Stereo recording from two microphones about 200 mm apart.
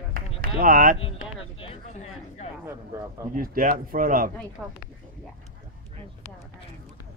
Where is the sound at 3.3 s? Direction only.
45° right (ahead or behind).